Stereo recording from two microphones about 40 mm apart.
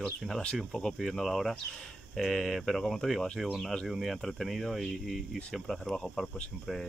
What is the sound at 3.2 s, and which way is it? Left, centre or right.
Speech, left.